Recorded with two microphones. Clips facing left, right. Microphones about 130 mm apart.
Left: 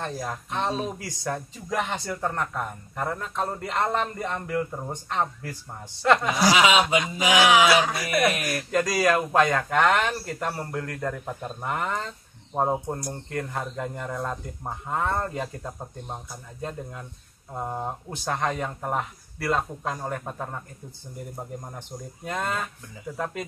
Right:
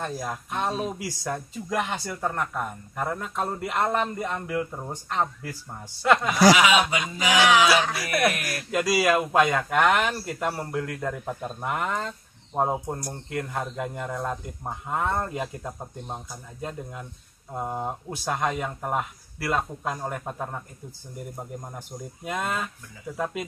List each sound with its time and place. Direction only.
0.0 s speech: 10° right (ahead or behind)
6.5 s speech: 25° left (ahead or behind)
8.7 s speech: 10° right (ahead or behind)
17.6 s speech: 10° right (ahead or behind)